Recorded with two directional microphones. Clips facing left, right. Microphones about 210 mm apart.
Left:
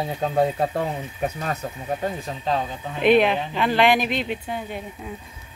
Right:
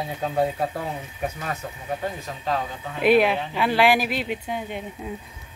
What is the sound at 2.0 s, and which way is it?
Speech, 30° left (ahead or behind).